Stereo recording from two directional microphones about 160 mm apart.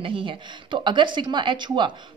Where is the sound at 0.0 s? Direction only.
35° right (ahead or behind).